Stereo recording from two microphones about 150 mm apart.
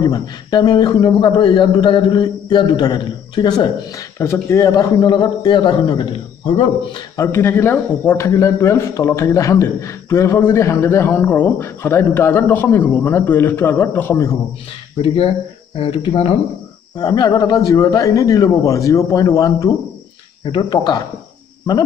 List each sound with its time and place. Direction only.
0.0 s speech: 30° left (ahead or behind)
7.2 s a man's voice: 20° left (ahead or behind)
15.0 s speech: 40° left (ahead or behind)
16.9 s speech: 30° left (ahead or behind)
20.4 s speech: 30° left (ahead or behind)